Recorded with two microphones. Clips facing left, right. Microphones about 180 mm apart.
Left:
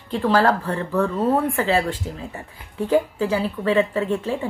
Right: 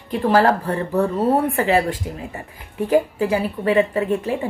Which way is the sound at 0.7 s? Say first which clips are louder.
Right 2 dB; 35° right (ahead or behind).